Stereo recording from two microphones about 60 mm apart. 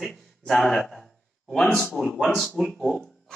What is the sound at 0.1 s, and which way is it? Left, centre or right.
A man's voice, centre.